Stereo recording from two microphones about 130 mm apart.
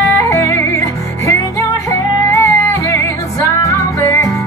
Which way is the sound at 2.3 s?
25° left (ahead or behind).